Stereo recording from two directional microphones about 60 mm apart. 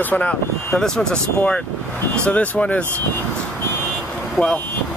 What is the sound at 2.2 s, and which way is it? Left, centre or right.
Speech, left.